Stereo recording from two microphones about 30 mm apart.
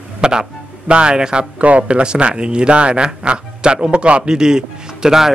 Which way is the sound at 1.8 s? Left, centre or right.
Right.